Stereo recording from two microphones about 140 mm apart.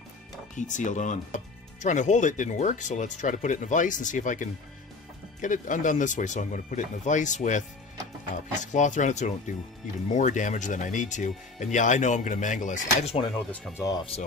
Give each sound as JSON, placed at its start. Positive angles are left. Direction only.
{"t": 0.6, "sound": "speech", "side_deg": 60}
{"t": 13.2, "sound": "speech", "side_deg": 0}
{"t": 13.7, "sound": "speech", "side_deg": 25}